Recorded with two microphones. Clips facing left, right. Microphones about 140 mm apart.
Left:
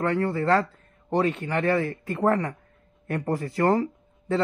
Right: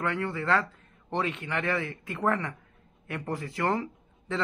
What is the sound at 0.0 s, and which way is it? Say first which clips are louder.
Speech: left 6 dB; 35° left (ahead or behind).